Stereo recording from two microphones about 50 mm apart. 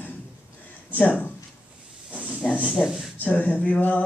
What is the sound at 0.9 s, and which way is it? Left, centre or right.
Speech, left.